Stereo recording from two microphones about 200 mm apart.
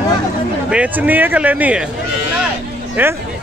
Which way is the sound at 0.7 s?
5° right (ahead or behind).